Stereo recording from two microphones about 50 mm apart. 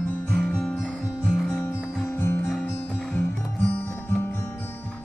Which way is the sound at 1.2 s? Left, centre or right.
Centre.